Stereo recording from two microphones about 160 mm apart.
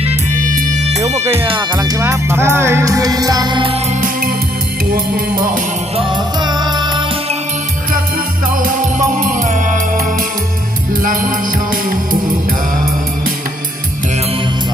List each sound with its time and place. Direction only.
1.5 s music: 25° right (ahead or behind)
4.9 s music: 60° right (ahead or behind)
5.9 s music: 30° right (ahead or behind)
8.6 s music: 55° right (ahead or behind)